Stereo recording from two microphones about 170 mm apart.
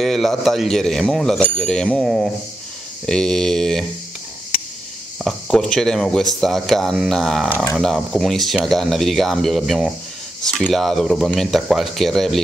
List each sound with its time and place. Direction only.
0.0 s speech: centre (ahead or behind)
5.2 s speech: 5° left (ahead or behind)